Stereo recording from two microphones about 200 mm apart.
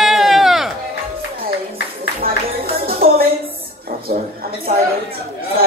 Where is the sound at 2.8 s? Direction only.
50° right (ahead or behind).